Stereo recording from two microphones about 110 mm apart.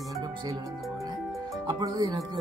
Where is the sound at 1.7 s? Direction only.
40° right (ahead or behind).